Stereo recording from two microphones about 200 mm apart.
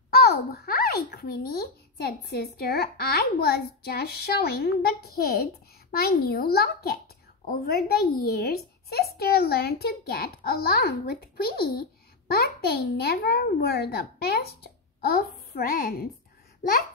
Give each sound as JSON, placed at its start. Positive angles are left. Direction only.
{"t": 0.1, "sound": "a child's voice", "side_deg": 50}